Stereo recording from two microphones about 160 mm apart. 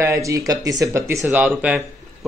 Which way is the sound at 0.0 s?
20° right (ahead or behind).